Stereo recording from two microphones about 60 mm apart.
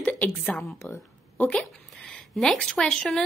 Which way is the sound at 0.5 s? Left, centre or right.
Centre.